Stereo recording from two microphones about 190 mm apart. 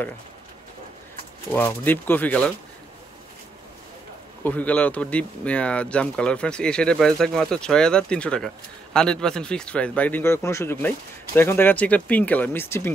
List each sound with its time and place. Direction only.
1.5 s speech: 10° left (ahead or behind)
4.4 s speech: 10° left (ahead or behind)